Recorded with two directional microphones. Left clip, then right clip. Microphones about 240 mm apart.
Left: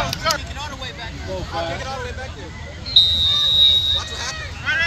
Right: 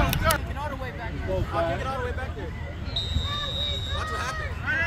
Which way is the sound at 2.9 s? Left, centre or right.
Centre.